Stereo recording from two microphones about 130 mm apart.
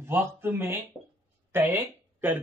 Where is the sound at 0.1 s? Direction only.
20° right (ahead or behind).